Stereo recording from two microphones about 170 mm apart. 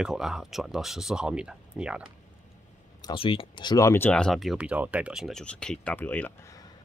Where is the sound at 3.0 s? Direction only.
25° left (ahead or behind).